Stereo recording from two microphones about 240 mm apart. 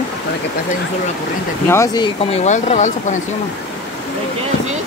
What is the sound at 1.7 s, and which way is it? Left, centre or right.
Speech, centre.